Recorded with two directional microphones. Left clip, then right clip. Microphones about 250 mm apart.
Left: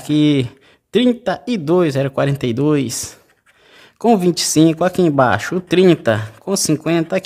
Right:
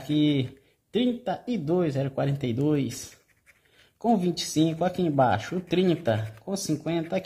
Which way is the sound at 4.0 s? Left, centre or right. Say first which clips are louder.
Left 11 dB; left.